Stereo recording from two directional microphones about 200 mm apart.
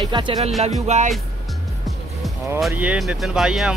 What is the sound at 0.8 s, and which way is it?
Speech, 35° right (ahead or behind).